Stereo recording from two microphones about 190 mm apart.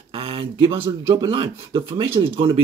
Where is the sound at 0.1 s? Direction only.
30° right (ahead or behind).